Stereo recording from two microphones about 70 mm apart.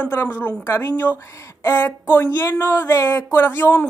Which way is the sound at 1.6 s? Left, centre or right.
Left.